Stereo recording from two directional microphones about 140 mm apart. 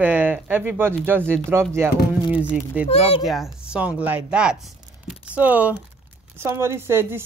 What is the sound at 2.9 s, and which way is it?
Speech, 45° left (ahead or behind).